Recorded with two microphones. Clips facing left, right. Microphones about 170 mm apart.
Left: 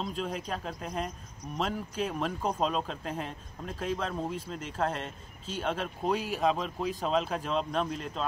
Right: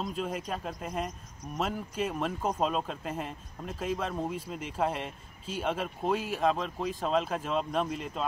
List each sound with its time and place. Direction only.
0.0 s speech: 5° right (ahead or behind)